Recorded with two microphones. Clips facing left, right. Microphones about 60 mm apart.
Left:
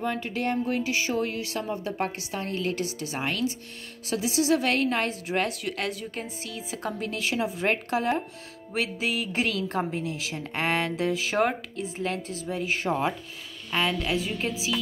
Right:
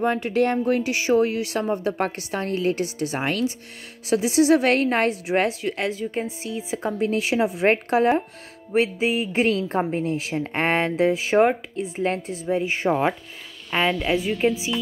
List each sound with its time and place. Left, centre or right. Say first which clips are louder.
0.0 s speech: right 8 dB; right
0.8 s a woman's voice: right 7 dB; right
2.5 s speech: right 6 dB; right
3.2 s speech: right 4 dB; right
4.1 s a woman's voice: right 7 dB; right
5.7 s speech: right 5 dB; centre
6.4 s a woman's voice: right 6 dB; right